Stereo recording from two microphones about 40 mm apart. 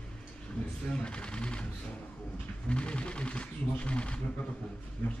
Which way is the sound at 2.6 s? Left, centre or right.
Left.